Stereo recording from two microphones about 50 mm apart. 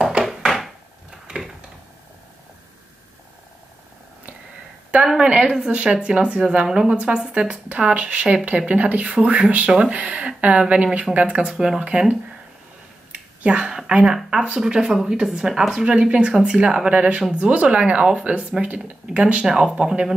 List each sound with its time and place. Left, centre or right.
5.0 s a sound: centre
5.3 s speech: right
7.7 s speech: right
11.4 s speech: centre
11.8 s speech: right
13.1 s a sound: right
13.7 s speech: centre
19.4 s speech: centre